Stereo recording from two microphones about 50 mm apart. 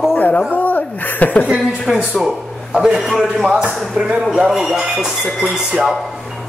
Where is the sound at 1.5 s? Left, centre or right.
Centre.